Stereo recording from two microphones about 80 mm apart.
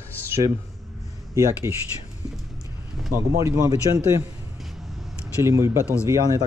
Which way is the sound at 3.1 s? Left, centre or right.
Right.